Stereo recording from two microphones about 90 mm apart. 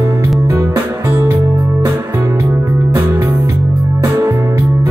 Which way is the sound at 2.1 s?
20° right (ahead or behind).